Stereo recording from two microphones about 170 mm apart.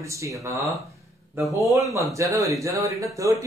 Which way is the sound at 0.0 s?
15° right (ahead or behind).